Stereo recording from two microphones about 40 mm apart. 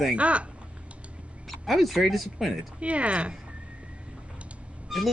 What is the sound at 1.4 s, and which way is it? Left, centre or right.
Speech, centre.